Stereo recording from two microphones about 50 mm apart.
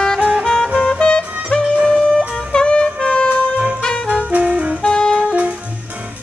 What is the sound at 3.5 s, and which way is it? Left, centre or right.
Music, right.